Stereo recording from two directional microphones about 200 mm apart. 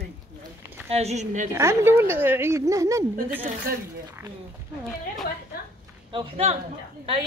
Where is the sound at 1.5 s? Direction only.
15° right (ahead or behind).